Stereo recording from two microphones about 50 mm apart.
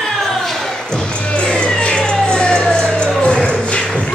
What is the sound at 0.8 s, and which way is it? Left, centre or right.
Music, centre.